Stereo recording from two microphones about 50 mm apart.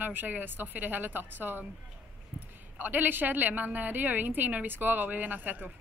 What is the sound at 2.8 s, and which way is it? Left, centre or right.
A woman's voice, right.